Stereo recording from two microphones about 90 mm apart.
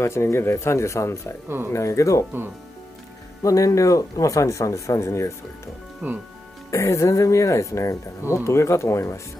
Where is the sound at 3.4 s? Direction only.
40° left (ahead or behind).